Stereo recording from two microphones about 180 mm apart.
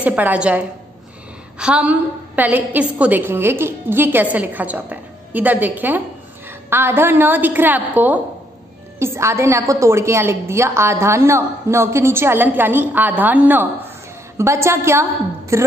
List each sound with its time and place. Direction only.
0.0 s a woman's voice: 10° right (ahead or behind)